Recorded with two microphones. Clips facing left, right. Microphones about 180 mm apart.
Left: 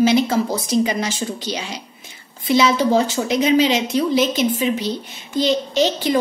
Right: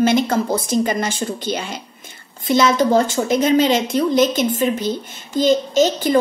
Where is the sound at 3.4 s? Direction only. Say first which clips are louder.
Even; 50° right (ahead or behind).